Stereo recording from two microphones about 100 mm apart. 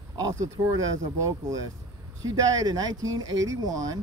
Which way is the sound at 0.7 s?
35° right (ahead or behind).